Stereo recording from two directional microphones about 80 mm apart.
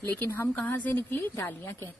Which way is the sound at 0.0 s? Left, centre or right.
Left.